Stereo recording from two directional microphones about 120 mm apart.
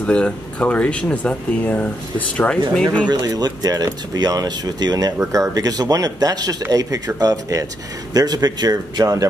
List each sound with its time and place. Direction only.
0.0 s speech: 10° left (ahead or behind)
3.1 s a man's voice: 35° right (ahead or behind)